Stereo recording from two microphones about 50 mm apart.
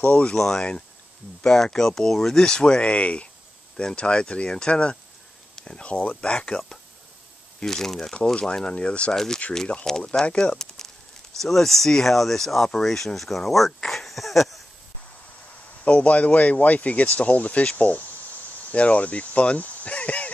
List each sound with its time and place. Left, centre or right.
0.0 s speech: left
0.4 s speech: centre
8.6 s speech: left
9.1 s speech: centre
10.5 s speech: centre
15.8 s speech: left
19.6 s a sound: left